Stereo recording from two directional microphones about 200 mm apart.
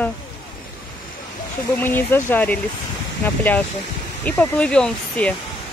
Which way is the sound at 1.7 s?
10° left (ahead or behind).